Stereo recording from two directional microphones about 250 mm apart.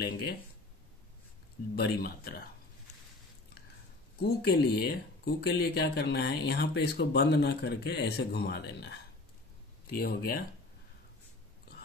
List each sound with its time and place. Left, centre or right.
0.0 s speech: left
1.8 s speech: left
4.2 s speech: left